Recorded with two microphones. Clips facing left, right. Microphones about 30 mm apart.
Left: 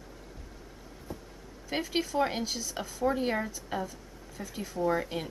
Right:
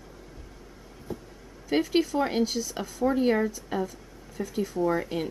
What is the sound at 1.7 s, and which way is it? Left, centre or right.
Speech, centre.